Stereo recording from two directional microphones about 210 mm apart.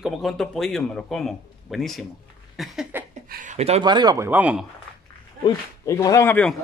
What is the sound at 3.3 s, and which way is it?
Speech, 35° right (ahead or behind).